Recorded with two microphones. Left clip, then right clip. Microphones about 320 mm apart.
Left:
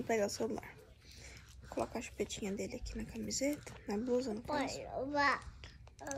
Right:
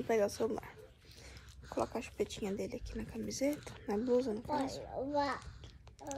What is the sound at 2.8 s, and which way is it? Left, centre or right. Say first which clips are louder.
Speech: right 2 dB; centre.